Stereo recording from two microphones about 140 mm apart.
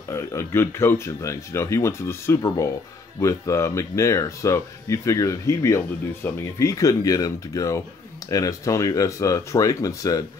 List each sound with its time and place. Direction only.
0.1 s speech: 20° left (ahead or behind)